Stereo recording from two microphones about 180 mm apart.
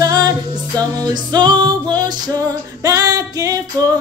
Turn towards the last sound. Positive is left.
turn(degrees=-20)  # may be behind; listen again after turning